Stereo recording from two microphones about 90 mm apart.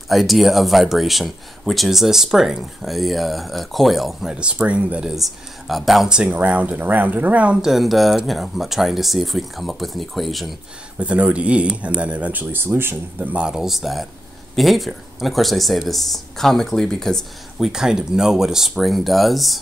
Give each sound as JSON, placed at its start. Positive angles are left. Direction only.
{"t": 0.1, "sound": "speech", "side_deg": 0}
{"t": 5.1, "sound": "speech", "side_deg": 0}
{"t": 7.7, "sound": "speech", "side_deg": 0}
{"t": 11.0, "sound": "speech", "side_deg": -15}
{"t": 13.3, "sound": "speech", "side_deg": -10}